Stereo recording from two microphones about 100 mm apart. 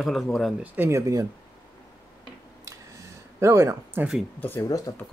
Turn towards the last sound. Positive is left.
turn(degrees=30)  # may be behind; listen again after turning